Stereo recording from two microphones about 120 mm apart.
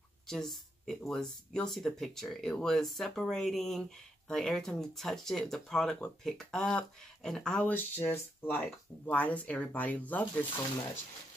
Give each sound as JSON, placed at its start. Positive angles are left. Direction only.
{"t": 0.3, "sound": "speech", "side_deg": 5}